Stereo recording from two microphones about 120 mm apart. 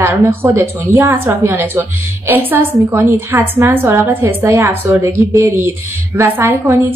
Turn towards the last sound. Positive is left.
turn(degrees=-20)  # may be behind; listen again after turning